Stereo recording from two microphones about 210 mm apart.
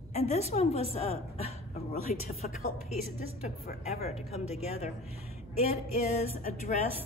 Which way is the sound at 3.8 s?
30° left (ahead or behind).